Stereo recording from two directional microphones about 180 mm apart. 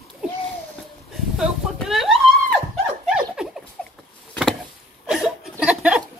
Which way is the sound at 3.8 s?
5° left (ahead or behind).